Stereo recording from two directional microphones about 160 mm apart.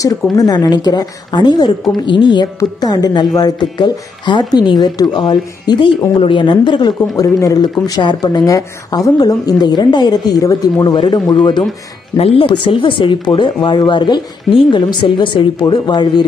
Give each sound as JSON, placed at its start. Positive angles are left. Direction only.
{"t": 0.4, "sound": "speech", "side_deg": 25}